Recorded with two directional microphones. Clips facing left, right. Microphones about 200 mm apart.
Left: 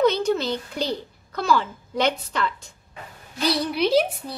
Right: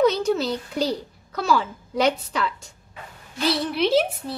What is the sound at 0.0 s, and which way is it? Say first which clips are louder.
A child's voice: right 1 dB; 5° right (ahead or behind).